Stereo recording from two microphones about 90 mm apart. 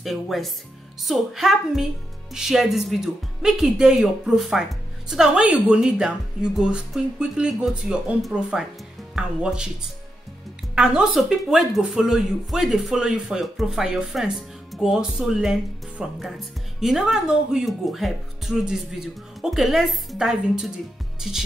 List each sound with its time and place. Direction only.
0.0 s a woman's voice: centre (ahead or behind)
10.7 s a woman's voice: 10° right (ahead or behind)